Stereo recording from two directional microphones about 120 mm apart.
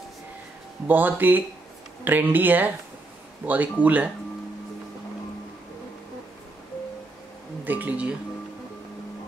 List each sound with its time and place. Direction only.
0.8 s speech: 15° right (ahead or behind)
7.6 s speech: 15° right (ahead or behind)